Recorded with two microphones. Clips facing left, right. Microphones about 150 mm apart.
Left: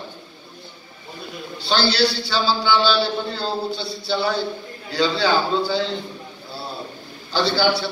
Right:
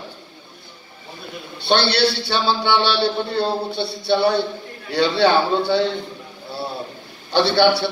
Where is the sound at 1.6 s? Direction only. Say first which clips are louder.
Right 2 dB; 65° right (ahead or behind).